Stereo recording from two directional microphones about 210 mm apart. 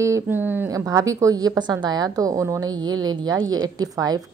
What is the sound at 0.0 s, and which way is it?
Speech, 10° right (ahead or behind).